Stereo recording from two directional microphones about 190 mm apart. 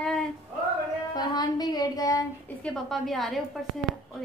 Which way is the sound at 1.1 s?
20° left (ahead or behind).